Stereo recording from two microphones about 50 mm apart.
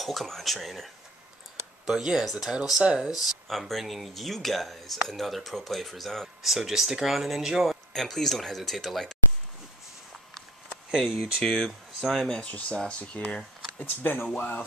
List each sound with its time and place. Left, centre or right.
0.0 s speech: centre
1.9 s speech: centre
7.9 s speech: centre
10.9 s speech: centre
11.4 s speech: centre
12.4 s speech: left
13.7 s speech: left